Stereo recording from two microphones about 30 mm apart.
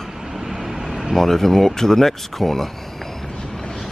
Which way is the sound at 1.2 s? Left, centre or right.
Centre.